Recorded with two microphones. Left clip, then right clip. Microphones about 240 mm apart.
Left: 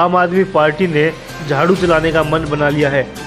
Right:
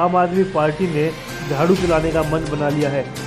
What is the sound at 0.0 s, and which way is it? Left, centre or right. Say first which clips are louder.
Speech: left 4 dB; left.